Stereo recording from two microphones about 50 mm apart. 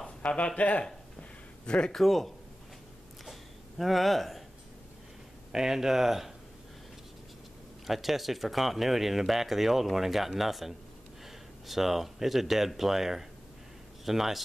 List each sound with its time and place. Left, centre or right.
0.2 s speech: left
1.7 s speech: centre
2.0 s speech: centre
3.3 s a sound: centre
5.5 s speech: centre
7.8 s speech: centre